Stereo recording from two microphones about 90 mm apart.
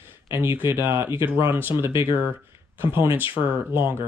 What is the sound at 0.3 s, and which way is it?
Speech, 30° right (ahead or behind).